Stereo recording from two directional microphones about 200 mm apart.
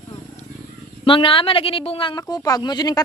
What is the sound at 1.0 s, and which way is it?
A woman's voice, 25° left (ahead or behind).